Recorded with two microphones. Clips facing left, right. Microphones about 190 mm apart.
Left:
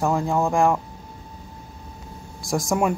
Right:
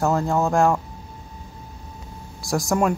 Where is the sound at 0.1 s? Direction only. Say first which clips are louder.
Right 1 dB; 15° left (ahead or behind).